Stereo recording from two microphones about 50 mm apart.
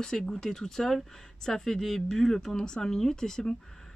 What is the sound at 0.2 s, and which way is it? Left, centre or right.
Speech, centre.